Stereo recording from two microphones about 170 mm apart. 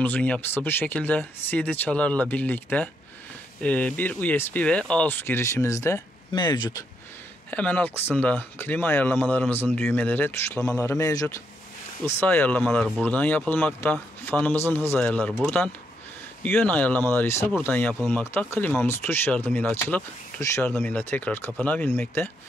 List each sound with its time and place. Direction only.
0.0 s speech: 10° left (ahead or behind); by 6.8 s 25° left (ahead or behind)
7.5 s speech: 10° left (ahead or behind)